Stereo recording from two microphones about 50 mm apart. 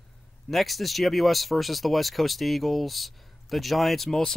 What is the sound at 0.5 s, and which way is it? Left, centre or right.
Speech, centre.